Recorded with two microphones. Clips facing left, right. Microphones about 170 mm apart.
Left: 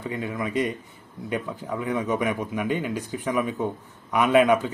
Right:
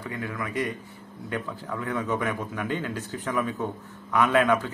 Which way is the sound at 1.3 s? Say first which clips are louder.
Left 3 dB; 15° left (ahead or behind).